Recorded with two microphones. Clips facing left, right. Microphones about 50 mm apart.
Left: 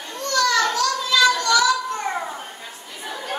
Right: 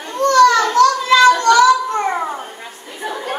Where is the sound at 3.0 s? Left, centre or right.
Right.